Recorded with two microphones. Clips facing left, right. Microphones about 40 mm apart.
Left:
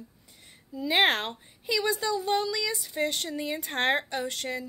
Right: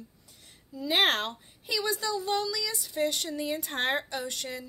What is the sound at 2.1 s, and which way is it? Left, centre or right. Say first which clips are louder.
Speech: left 2 dB; centre.